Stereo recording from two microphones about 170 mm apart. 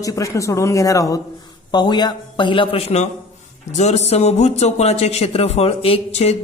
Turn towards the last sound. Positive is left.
turn(degrees=40)  # may be behind; listen again after turning